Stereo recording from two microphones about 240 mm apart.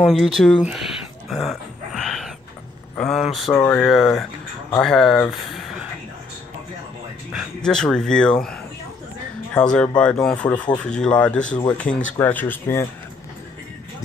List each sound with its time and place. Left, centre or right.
0.0 s speech: centre
0.7 s a sound: centre
3.0 s speech: centre
7.3 s speech: centre
9.8 s speech: centre